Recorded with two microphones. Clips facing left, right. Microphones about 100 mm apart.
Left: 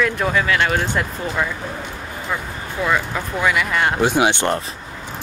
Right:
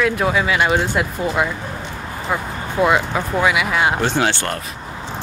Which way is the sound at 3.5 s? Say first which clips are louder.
Left 2 dB; 5° right (ahead or behind).